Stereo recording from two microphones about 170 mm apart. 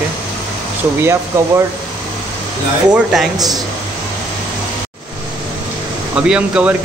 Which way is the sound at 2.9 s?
Centre (ahead or behind).